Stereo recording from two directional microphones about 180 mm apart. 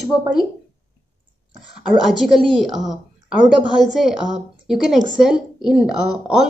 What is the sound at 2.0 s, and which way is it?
A woman's voice, centre (ahead or behind).